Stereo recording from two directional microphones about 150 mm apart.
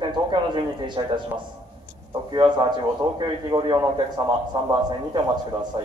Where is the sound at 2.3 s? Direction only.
30° right (ahead or behind).